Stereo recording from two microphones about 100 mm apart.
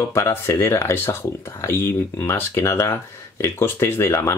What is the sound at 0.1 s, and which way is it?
Speech, 25° left (ahead or behind).